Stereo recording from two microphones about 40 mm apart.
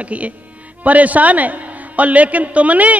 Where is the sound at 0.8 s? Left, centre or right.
Right.